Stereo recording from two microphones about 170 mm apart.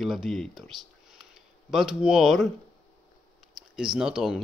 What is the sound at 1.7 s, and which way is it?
Speech, 5° right (ahead or behind).